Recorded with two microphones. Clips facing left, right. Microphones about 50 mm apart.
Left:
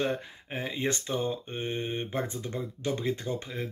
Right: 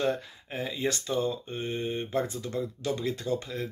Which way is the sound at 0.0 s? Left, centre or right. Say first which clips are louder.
Right 1 dB; left.